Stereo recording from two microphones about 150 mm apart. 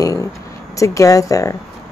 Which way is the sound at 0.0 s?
20° left (ahead or behind).